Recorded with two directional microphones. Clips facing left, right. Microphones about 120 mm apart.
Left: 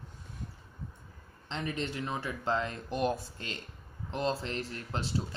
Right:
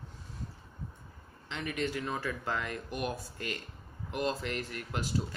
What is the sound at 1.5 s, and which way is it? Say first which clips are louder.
Speech: right 1 dB; 30° left (ahead or behind).